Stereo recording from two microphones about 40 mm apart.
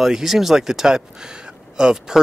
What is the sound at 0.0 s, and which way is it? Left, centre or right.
Speech, centre.